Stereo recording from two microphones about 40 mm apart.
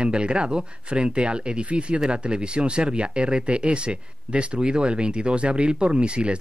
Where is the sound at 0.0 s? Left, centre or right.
Right.